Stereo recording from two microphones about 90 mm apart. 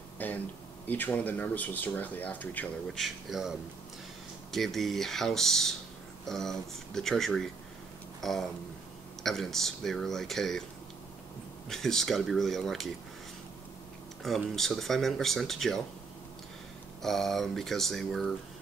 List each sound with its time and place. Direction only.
0.2 s a sound: 20° left (ahead or behind)
0.8 s speech: 20° left (ahead or behind)
2.9 s speech: centre (ahead or behind)
8.2 s a sound: 5° left (ahead or behind)
9.2 s speech: 5° left (ahead or behind)
11.7 s speech: 5° left (ahead or behind)
14.2 s speech: 5° left (ahead or behind)
17.0 s speech: 5° left (ahead or behind)